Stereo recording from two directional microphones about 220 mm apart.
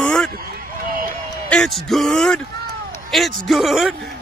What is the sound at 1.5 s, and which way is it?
Speech, centre (ahead or behind).